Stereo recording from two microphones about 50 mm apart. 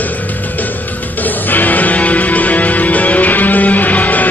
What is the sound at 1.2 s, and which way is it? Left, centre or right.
Music, left.